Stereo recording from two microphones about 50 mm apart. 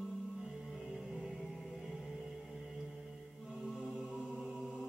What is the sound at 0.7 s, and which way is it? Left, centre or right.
Music, centre.